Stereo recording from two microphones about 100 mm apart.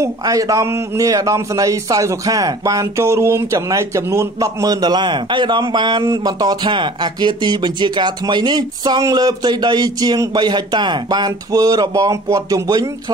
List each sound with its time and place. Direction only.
0.0 s a man's voice: 35° right (ahead or behind)